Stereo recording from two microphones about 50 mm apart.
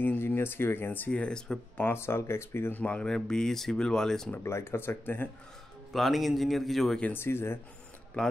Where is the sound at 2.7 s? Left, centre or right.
Left.